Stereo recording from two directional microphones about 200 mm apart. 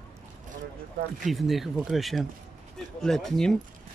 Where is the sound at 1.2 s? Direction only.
Centre (ahead or behind).